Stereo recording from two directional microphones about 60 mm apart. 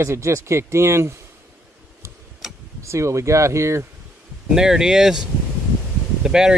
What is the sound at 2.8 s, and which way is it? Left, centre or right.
Speech, right.